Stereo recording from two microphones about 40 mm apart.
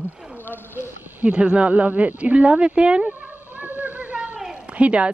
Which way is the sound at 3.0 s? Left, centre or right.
Right.